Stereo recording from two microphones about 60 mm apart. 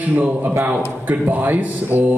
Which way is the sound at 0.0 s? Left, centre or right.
Right.